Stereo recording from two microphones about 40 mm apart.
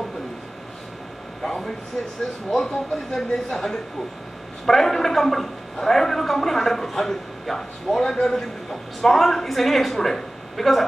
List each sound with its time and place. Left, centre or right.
1.4 s a sound: centre
2.5 s a man's voice: centre
4.6 s a man's voice: centre